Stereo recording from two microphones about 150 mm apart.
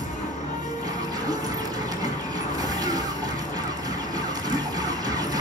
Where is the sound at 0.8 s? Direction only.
25° right (ahead or behind).